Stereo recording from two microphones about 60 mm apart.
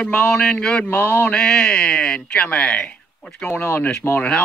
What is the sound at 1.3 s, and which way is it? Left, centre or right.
Speech, centre.